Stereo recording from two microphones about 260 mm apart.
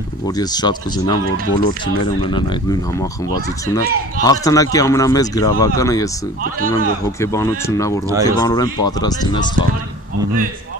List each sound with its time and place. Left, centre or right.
0.4 s speech: centre
7.2 s speech: centre